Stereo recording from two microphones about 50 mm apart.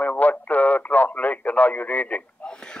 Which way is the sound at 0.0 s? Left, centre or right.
Left.